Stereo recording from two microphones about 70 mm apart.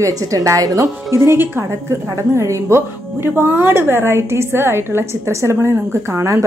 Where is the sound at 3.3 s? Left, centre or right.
Right.